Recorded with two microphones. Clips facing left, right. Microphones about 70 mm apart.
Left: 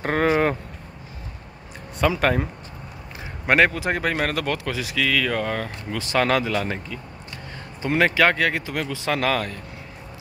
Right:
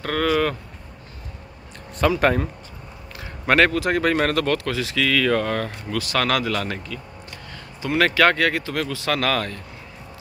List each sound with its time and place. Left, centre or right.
0.0 s vehicle: left
2.0 s speech: centre
3.4 s speech: centre
5.9 s speech: left
8.0 s speech: centre